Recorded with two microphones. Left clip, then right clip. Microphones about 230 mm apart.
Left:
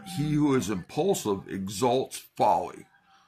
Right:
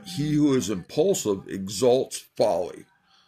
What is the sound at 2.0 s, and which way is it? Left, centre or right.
Speech, centre.